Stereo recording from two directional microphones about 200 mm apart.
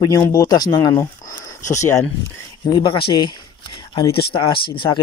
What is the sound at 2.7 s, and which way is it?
Speech, 25° left (ahead or behind).